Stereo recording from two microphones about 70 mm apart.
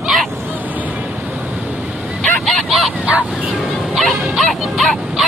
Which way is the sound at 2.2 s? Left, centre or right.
Centre.